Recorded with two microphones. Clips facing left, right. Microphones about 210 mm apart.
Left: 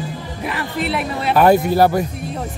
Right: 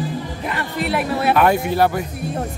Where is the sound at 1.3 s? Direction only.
35° left (ahead or behind).